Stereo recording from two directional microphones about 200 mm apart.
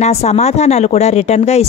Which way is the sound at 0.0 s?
30° left (ahead or behind).